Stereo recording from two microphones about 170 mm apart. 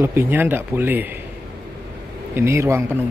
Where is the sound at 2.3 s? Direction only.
15° right (ahead or behind).